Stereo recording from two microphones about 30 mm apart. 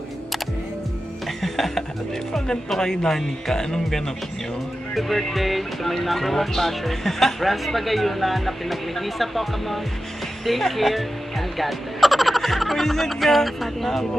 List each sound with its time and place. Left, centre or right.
1.4 s music: centre
2.8 s speech: left
4.9 s speech: centre